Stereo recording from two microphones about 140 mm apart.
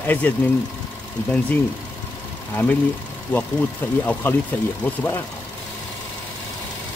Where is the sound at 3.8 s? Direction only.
15° left (ahead or behind).